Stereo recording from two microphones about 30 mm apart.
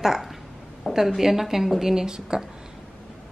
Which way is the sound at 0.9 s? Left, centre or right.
Left.